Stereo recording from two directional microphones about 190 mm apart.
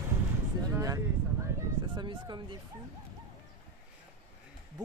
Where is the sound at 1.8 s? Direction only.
25° right (ahead or behind).